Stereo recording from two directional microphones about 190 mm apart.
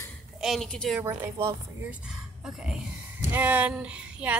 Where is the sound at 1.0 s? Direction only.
15° right (ahead or behind).